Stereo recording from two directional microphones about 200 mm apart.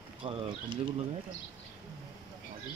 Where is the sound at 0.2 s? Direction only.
25° right (ahead or behind).